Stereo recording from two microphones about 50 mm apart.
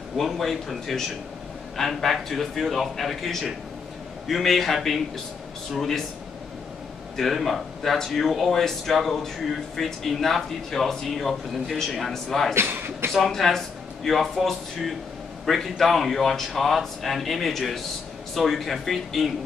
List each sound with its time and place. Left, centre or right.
0.2 s speech: centre
7.2 s speech: centre
12.5 s speech: right
13.1 s speech: centre